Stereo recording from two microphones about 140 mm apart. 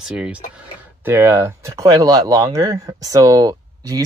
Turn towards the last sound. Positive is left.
turn(degrees=-25)  # may be behind; listen again after turning